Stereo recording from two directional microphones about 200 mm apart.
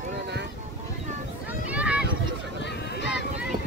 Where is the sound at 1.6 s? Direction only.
5° right (ahead or behind).